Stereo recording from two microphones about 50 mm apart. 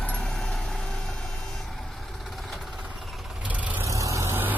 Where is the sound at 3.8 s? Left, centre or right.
Right.